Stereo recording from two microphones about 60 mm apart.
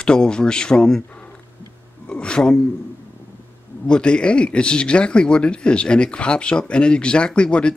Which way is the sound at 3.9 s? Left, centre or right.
Centre.